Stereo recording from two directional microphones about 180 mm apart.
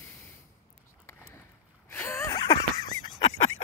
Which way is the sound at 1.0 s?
15° left (ahead or behind).